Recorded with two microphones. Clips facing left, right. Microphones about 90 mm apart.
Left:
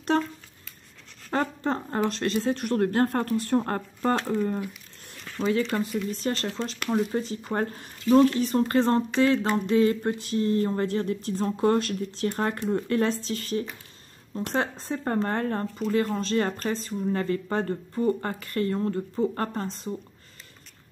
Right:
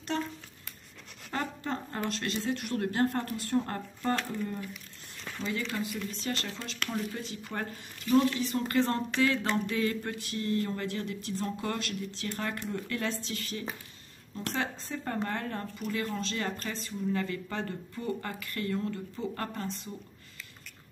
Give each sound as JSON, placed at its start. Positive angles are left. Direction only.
{"t": 1.3, "sound": "speech", "side_deg": 40}
{"t": 5.4, "sound": "speech", "side_deg": 65}
{"t": 5.8, "sound": "speech", "side_deg": 40}
{"t": 14.5, "sound": "speech", "side_deg": 45}